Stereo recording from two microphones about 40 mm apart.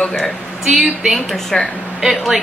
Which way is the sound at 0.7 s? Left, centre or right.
Centre.